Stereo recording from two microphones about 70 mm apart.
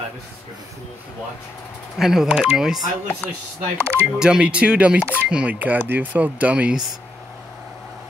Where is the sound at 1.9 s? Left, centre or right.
Centre.